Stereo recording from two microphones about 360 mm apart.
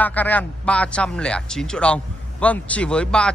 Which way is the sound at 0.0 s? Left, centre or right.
Centre.